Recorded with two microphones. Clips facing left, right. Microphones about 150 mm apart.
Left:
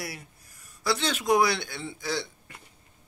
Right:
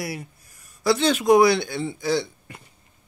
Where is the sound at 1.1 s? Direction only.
65° right (ahead or behind).